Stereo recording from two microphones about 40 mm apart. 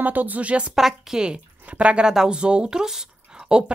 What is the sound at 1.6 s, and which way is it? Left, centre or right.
Speech, right.